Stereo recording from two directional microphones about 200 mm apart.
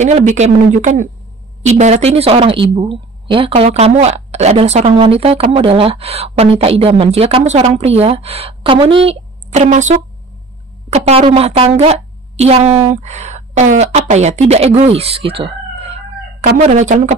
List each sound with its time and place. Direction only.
0.0 s speech: 35° right (ahead or behind)
15.8 s crowing: 30° right (ahead or behind)
16.5 s speech: 35° right (ahead or behind)